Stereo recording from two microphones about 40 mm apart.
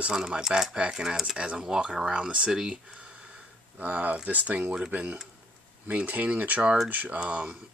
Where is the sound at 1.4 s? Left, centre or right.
Right.